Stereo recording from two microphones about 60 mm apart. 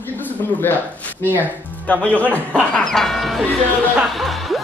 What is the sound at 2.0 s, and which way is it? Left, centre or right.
Speech, left.